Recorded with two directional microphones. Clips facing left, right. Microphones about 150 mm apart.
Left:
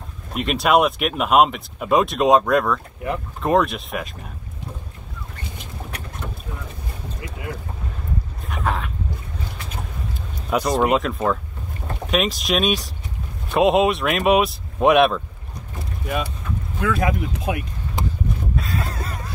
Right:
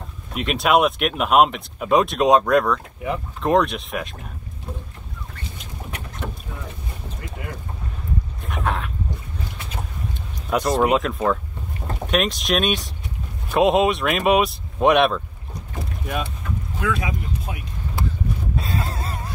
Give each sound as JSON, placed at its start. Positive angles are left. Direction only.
{"t": 0.3, "sound": "speech", "side_deg": 0}
{"t": 7.2, "sound": "speech", "side_deg": 0}
{"t": 8.5, "sound": "a sound", "side_deg": 0}
{"t": 10.5, "sound": "speech", "side_deg": 0}
{"t": 15.8, "sound": "boat", "side_deg": 0}
{"t": 17.0, "sound": "speech", "side_deg": 65}
{"t": 18.9, "sound": "a sound", "side_deg": -30}